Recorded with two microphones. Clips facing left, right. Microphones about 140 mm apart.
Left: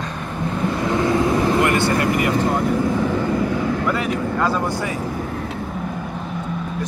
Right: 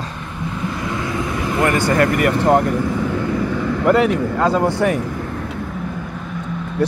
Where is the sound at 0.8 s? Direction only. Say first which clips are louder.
Left 7 dB; 30° left (ahead or behind).